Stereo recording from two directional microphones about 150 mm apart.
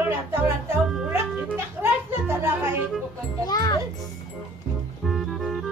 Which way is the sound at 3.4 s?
25° left (ahead or behind).